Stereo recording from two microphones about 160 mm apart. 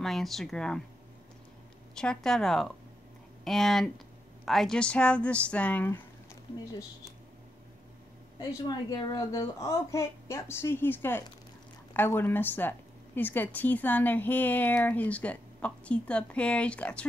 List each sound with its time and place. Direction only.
0.0 s speech: centre (ahead or behind)
2.0 s a woman's voice: 5° left (ahead or behind)
8.4 s a woman's voice: 25° left (ahead or behind); by 17.1 s 5° left (ahead or behind)